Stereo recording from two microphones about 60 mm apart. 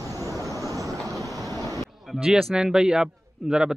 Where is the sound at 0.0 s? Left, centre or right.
Right.